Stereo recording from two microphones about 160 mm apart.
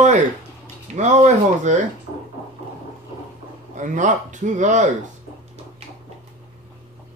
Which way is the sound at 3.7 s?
50° right (ahead or behind).